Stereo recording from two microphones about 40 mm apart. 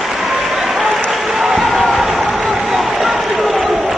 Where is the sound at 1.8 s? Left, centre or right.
Right.